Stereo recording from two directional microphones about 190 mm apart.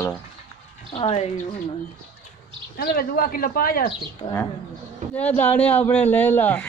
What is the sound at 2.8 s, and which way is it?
Speech, 55° left (ahead or behind).